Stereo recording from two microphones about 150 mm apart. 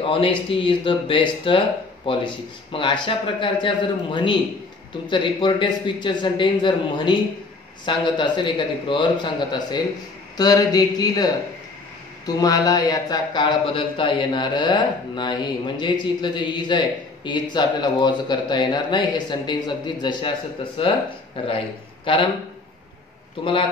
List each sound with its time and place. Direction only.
0.0 s a man's voice: 35° left (ahead or behind)